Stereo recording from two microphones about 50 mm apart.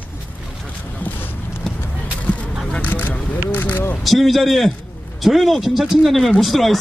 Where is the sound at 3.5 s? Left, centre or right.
Left.